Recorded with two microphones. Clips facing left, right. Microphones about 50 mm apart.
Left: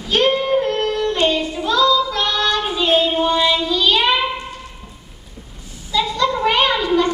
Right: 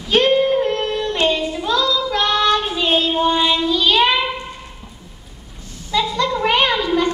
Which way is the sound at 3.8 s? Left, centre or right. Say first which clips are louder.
Right 1 dB; right.